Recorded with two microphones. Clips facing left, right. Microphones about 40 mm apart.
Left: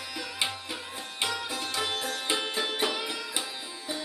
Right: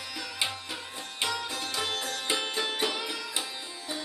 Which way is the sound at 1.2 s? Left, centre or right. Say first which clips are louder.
Even; centre.